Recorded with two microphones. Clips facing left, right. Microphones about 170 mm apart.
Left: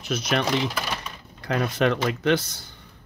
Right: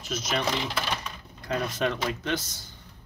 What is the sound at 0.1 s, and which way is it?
Speech, 65° left (ahead or behind).